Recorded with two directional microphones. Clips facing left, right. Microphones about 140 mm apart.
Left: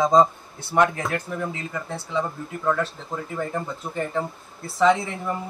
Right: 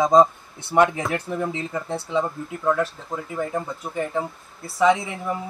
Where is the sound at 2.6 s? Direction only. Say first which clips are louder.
Right 2 dB; 10° right (ahead or behind).